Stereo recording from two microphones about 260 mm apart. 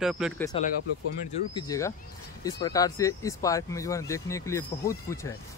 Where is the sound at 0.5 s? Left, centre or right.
Left.